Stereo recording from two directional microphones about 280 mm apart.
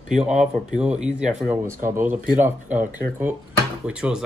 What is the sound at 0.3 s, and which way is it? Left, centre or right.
Speech, right.